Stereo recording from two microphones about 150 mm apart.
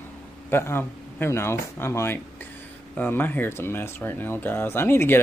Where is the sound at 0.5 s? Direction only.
15° left (ahead or behind).